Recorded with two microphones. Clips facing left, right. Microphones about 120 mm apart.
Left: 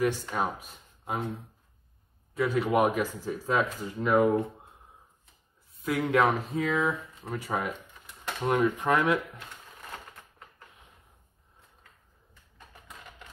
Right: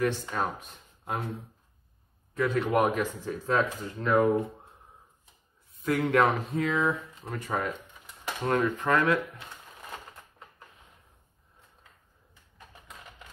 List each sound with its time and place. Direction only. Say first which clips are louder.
0.0 s speech: left 1 dB; 5° left (ahead or behind)
5.9 s speech: right 1 dB; centre (ahead or behind)
8.6 s speech: even; 20° left (ahead or behind)